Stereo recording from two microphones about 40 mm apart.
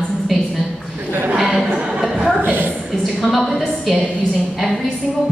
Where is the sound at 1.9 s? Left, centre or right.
Centre.